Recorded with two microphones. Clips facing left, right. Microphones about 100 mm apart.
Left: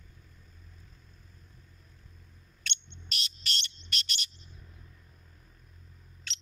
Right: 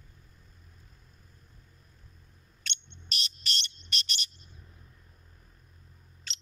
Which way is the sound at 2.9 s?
50° right (ahead or behind).